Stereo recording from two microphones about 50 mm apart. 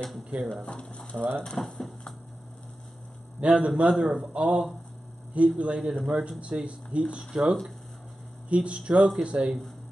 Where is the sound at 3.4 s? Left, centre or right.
Right.